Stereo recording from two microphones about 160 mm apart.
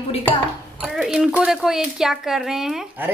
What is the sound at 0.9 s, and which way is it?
A woman's voice, 5° right (ahead or behind).